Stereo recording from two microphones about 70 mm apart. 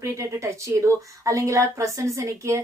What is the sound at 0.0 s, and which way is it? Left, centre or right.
A woman's voice, right.